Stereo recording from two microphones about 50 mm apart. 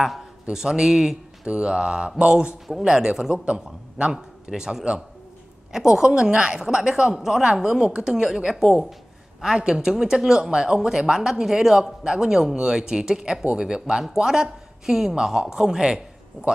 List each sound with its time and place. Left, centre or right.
0.0 s speech: centre
1.5 s mantra: centre
2.8 s speech: centre